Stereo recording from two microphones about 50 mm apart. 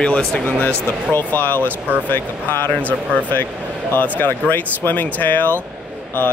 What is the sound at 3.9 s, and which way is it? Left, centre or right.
Speech, left.